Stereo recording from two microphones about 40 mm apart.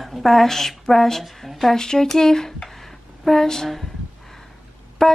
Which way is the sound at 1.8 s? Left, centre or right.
Centre.